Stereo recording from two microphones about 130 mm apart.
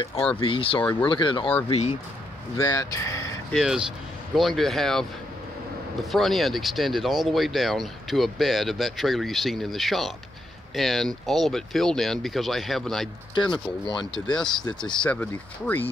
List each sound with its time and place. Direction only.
0.4 s speech: 45° left (ahead or behind)
2.6 s speech: 30° left (ahead or behind)
3.5 s speech: 5° right (ahead or behind)
6.1 s speech: centre (ahead or behind)
13.3 s speech: 35° left (ahead or behind)
15.0 s speech: 10° left (ahead or behind)